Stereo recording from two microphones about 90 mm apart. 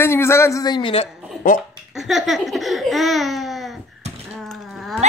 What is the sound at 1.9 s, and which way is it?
Laughter, 5° right (ahead or behind).